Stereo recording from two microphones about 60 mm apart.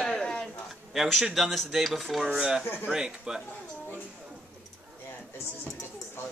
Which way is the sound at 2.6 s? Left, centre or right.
Left.